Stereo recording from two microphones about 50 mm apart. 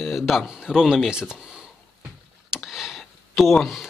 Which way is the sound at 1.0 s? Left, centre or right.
Centre.